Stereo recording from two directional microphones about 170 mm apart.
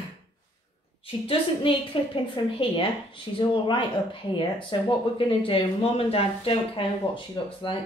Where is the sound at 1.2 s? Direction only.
30° left (ahead or behind).